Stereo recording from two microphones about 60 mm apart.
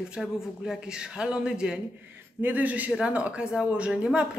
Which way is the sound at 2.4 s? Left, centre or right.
Right.